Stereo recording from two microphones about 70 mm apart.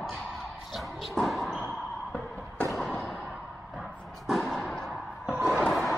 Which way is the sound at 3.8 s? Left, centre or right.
Centre.